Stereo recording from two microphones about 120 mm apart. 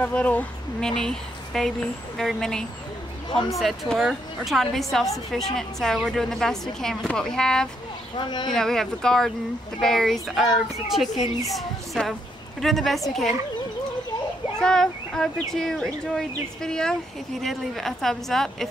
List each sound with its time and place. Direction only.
0.0 s speech: 10° left (ahead or behind)
8.2 s speech: 40° left (ahead or behind)
8.5 s a woman's voice: 5° left (ahead or behind)
14.6 s speech: 5° left (ahead or behind)